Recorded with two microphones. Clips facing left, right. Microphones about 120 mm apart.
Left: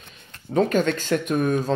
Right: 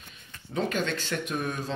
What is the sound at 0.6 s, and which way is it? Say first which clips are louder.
Speech: left 8 dB; 45° left (ahead or behind).